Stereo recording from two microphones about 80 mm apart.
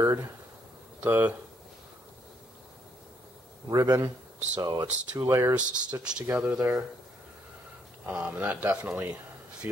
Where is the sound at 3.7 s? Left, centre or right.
Right.